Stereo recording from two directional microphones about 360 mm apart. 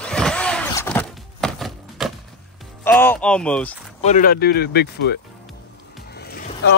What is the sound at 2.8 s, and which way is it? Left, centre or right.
Speech, centre.